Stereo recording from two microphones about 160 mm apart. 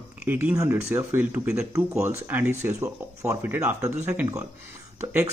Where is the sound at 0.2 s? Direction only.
10° right (ahead or behind).